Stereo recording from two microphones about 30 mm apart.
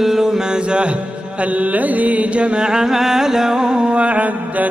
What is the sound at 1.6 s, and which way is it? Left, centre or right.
Music, right.